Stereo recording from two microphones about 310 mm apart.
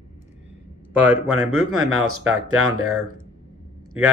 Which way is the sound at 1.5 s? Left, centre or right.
Right.